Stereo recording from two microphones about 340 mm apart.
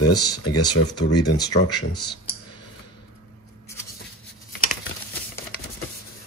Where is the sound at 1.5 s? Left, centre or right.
Left.